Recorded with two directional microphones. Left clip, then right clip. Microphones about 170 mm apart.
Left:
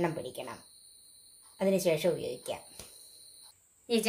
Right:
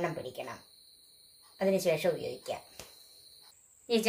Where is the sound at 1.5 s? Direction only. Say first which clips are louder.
Even; 25° left (ahead or behind).